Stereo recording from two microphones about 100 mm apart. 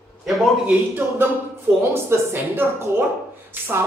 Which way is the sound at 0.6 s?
20° right (ahead or behind).